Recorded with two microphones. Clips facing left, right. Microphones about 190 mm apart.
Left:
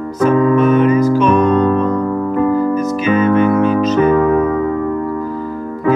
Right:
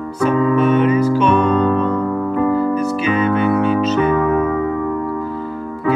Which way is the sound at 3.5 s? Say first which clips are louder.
Left 3 dB; 40° left (ahead or behind).